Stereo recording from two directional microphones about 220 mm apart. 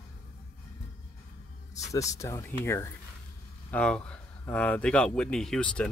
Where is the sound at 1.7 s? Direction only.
15° left (ahead or behind).